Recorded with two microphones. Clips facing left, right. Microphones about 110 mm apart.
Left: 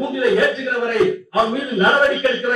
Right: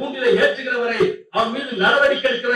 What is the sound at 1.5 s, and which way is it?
Speech, 30° left (ahead or behind).